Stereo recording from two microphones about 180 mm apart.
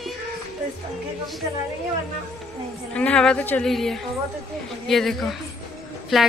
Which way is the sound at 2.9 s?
5° left (ahead or behind).